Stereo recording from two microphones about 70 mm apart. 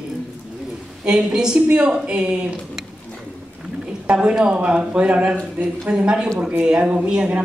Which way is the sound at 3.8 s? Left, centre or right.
Centre.